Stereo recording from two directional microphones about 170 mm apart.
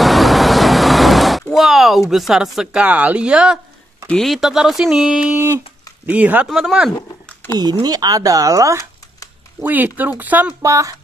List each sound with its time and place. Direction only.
0.0 s vehicle: centre (ahead or behind)
4.1 s speech: centre (ahead or behind)
7.5 s speech: 25° right (ahead or behind)